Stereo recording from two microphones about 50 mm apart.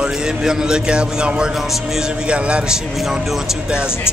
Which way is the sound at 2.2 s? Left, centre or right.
Right.